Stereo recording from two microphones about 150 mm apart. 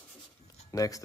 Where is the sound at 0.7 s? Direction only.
25° left (ahead or behind).